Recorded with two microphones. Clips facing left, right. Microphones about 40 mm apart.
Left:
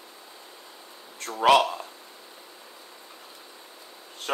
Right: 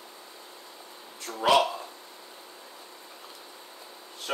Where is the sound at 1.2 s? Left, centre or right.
Left.